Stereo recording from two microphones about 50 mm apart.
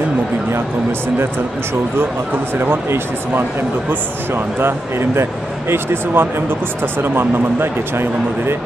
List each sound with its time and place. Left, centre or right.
2.6 s speech: right